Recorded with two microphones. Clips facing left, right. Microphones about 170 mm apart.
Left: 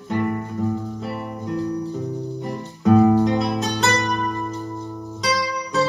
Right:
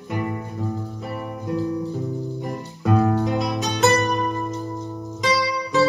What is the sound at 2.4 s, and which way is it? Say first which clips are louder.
Music: left 6 dB; centre (ahead or behind).